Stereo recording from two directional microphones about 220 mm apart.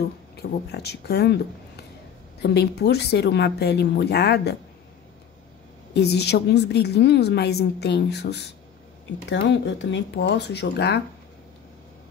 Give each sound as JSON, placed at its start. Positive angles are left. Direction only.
{"t": 0.4, "sound": "a woman's voice", "side_deg": 50}
{"t": 5.9, "sound": "a woman's voice", "side_deg": 50}